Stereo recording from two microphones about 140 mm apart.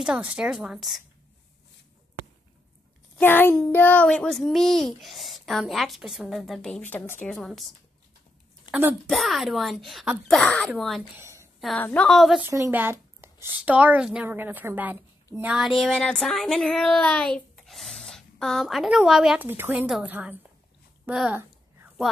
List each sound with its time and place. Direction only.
0.0 s a child's voice: 5° right (ahead or behind)
3.2 s a child's voice: 15° left (ahead or behind)
7.3 s a child's voice: centre (ahead or behind)
8.7 s a sound: 30° left (ahead or behind)
9.0 s a child's voice: centre (ahead or behind)
11.1 s a sound: 20° right (ahead or behind)
11.8 s a woman's voice: 10° left (ahead or behind)
12.1 s a child's voice: centre (ahead or behind)
12.4 s a woman's voice: 20° right (ahead or behind)
15.5 s speech: centre (ahead or behind)
19.4 s a woman's voice: 15° right (ahead or behind)